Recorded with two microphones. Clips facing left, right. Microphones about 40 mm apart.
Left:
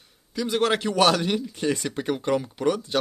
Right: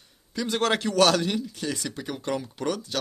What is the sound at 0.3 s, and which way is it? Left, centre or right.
A man's voice, centre.